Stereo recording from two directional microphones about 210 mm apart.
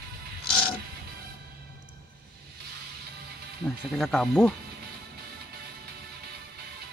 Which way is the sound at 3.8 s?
Centre (ahead or behind).